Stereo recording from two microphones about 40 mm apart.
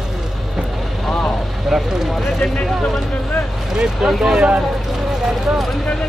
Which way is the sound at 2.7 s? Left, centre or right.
Centre.